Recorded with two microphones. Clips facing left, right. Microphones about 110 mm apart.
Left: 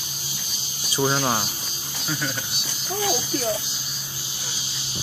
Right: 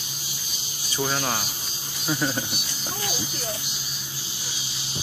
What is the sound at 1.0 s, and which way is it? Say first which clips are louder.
Speech: left 4 dB; 20° left (ahead or behind).